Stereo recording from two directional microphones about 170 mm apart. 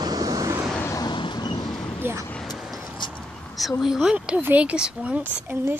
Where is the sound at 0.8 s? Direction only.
20° left (ahead or behind).